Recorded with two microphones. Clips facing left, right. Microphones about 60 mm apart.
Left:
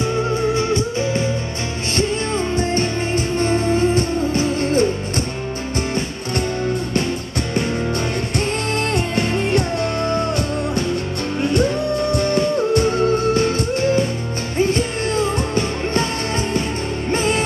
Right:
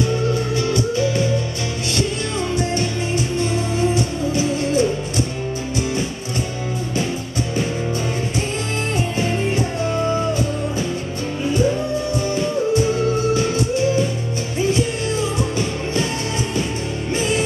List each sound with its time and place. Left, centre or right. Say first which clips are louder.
0.6 s music: even; left
8.4 s music: left 3 dB; left
12.2 s music: left 3 dB; left